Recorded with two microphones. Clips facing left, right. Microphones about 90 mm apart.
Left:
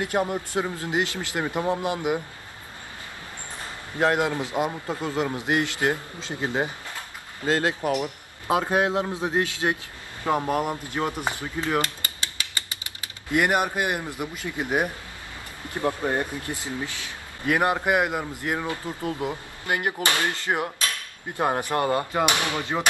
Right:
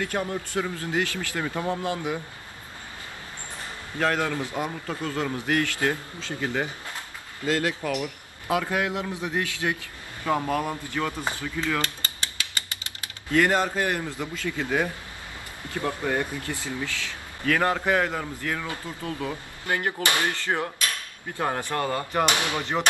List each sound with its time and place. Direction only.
0.0 s speech: 20° left (ahead or behind)
4.0 s speech: 20° left (ahead or behind)
13.3 s a man's voice: 15° left (ahead or behind)